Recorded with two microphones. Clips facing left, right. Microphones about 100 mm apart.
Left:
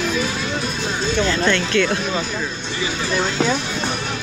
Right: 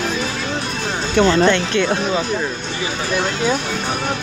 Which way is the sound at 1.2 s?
20° right (ahead or behind).